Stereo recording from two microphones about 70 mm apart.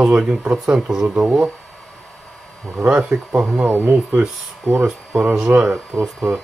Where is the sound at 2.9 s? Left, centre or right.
Right.